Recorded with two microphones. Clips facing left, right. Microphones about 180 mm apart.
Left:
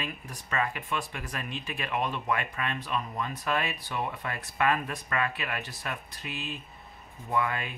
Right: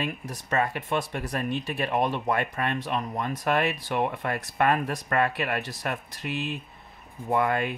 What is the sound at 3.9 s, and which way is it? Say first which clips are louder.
Speech: right 6 dB; 60° right (ahead or behind).